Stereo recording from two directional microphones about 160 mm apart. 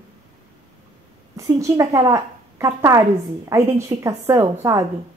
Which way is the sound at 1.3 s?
20° right (ahead or behind).